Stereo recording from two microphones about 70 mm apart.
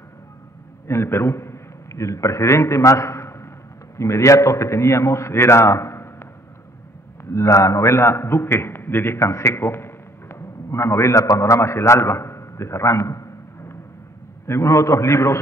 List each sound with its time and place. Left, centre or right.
0.8 s a man's voice: left
7.2 s a man's voice: left